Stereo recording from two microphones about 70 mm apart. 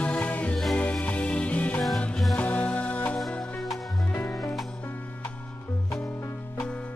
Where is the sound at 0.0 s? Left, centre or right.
Centre.